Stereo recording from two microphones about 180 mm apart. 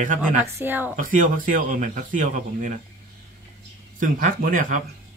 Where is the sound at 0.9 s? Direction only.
45° right (ahead or behind).